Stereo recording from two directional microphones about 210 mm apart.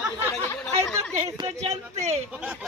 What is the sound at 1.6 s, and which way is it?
Speech, 30° right (ahead or behind).